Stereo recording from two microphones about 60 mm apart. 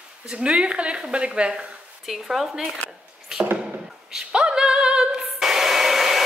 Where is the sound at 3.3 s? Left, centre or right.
Centre.